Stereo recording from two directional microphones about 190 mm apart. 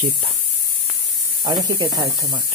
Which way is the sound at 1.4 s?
20° right (ahead or behind).